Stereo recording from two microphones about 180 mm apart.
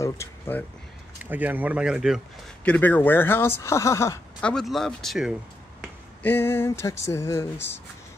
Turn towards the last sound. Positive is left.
turn(degrees=15)  # may be behind; listen again after turning